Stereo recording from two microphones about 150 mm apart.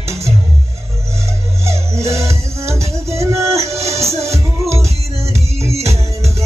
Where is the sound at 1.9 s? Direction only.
20° right (ahead or behind).